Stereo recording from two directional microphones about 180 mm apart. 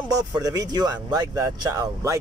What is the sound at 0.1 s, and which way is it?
Speech, 20° right (ahead or behind).